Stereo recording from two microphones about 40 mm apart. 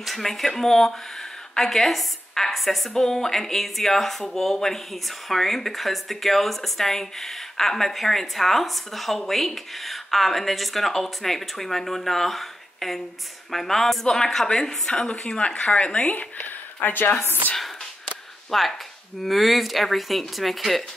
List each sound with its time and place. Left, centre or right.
0.0 s a woman's voice: centre; by 17.1 s left
18.5 s speech: centre